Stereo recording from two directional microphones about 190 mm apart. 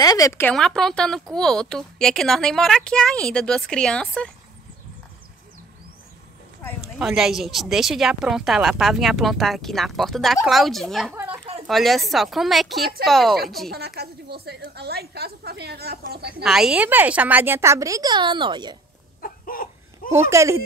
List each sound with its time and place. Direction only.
0.0 s speech: 20° left (ahead or behind)
7.0 s speech: 5° right (ahead or behind)
13.7 s a woman's voice: 60° right (ahead or behind)
16.4 s speech: 5° right (ahead or behind); by 18.8 s 25° right (ahead or behind)
19.2 s a sound: 50° left (ahead or behind)
20.1 s speech: 15° right (ahead or behind)